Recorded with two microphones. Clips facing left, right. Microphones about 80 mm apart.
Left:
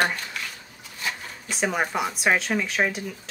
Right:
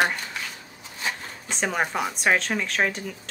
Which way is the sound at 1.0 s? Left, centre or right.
Right.